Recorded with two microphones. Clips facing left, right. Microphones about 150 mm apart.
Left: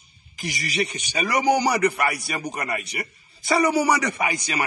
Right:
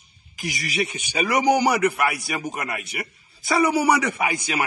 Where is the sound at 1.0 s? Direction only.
10° right (ahead or behind).